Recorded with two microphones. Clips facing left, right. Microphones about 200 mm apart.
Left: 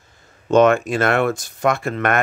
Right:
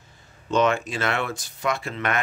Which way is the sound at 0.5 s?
50° left (ahead or behind).